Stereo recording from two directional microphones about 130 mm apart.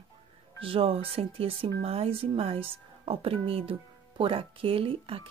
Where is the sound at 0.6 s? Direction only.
45° right (ahead or behind).